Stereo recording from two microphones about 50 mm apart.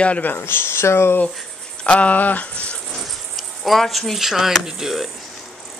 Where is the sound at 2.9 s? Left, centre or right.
Centre.